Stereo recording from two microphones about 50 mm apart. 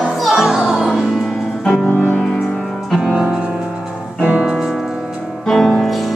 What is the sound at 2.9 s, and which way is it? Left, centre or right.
Music, centre.